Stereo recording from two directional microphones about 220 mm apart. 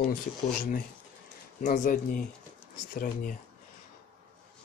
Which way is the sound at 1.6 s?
35° left (ahead or behind).